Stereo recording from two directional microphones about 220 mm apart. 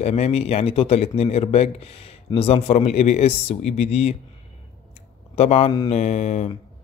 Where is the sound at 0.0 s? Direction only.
30° left (ahead or behind).